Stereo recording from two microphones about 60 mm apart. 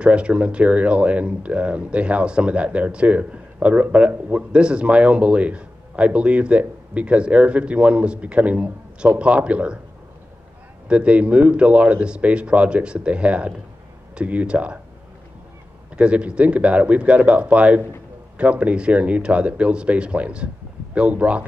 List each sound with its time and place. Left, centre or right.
0.0 s speech: centre
10.9 s speech: centre
16.0 s speech: centre